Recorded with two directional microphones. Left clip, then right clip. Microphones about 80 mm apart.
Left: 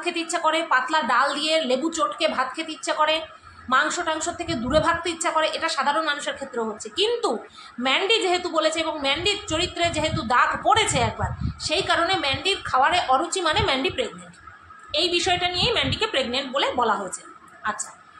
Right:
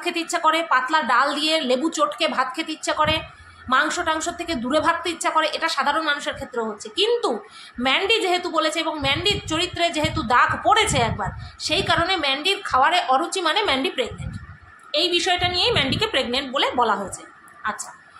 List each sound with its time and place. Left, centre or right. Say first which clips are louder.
0.0 s a woman's voice: right 3 dB; right